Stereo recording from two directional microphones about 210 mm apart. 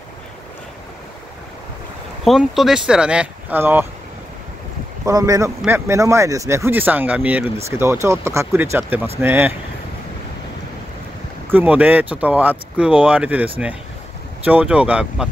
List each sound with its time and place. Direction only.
2.2 s speech: centre (ahead or behind)
5.0 s speech: 15° right (ahead or behind)
11.5 s speech: 5° right (ahead or behind)